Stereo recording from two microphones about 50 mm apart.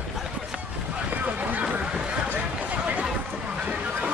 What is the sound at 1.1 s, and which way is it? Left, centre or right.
Vehicle, right.